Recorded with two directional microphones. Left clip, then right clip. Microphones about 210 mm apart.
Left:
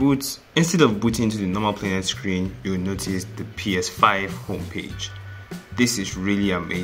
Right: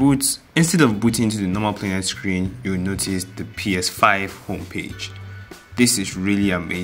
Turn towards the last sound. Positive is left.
turn(degrees=-15)  # may be behind; listen again after turning